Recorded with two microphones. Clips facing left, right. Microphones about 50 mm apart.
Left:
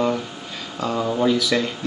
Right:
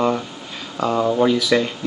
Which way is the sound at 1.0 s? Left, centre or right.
Right.